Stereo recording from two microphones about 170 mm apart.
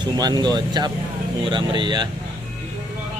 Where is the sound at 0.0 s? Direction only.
25° right (ahead or behind).